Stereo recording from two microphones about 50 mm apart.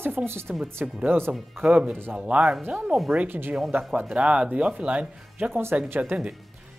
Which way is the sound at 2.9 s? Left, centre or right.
Right.